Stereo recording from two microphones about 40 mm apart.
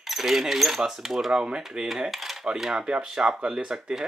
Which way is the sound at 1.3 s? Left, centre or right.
Right.